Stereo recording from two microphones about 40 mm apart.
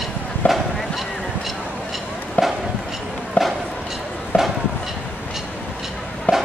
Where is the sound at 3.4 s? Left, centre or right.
Left.